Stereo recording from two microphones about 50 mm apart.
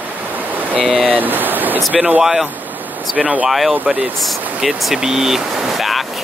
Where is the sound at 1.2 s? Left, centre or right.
Right.